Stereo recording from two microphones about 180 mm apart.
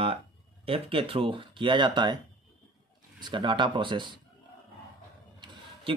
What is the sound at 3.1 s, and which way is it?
Speech, 25° right (ahead or behind).